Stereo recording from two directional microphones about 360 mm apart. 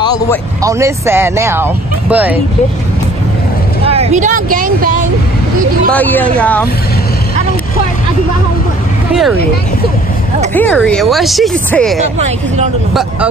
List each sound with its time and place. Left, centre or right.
0.6 s speech: centre
3.8 s speech: centre
5.9 s speech: centre
9.1 s speech: centre
10.5 s speech: centre